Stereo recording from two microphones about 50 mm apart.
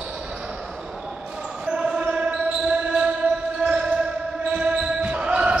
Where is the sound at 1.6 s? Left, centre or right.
Centre.